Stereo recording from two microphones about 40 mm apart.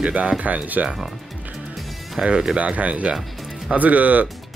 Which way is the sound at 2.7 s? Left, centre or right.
Right.